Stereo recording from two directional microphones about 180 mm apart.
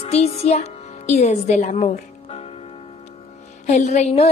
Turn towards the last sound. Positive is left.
turn(degrees=40)  # may be behind; listen again after turning